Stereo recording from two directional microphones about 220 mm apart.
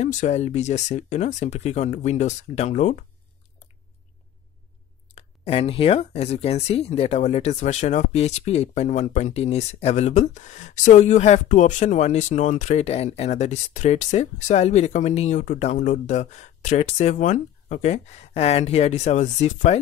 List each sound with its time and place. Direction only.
0.0 s speech: 35° left (ahead or behind)
5.0 s speech: 30° left (ahead or behind)